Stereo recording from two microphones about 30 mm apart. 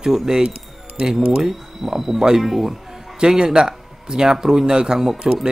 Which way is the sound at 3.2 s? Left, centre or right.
Right.